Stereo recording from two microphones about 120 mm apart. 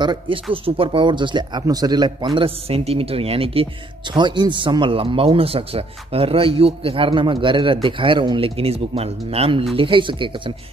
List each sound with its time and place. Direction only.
0.0 s speech: 45° right (ahead or behind)
2.2 s speech: 50° right (ahead or behind)
4.1 s speech: 40° right (ahead or behind)